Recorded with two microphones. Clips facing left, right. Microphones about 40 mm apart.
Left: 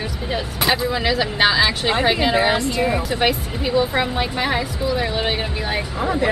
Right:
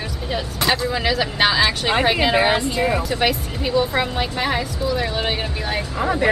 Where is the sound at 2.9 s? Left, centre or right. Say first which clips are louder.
Left 1 dB; centre.